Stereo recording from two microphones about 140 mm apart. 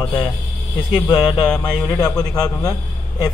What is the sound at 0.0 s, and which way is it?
A man's voice, 35° left (ahead or behind).